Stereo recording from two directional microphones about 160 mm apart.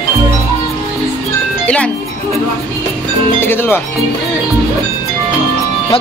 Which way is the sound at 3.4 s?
15° left (ahead or behind).